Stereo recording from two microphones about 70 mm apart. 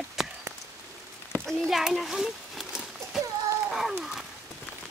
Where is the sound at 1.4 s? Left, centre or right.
Centre.